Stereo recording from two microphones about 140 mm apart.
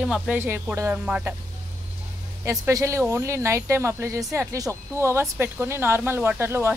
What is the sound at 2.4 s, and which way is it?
Speech, 20° right (ahead or behind).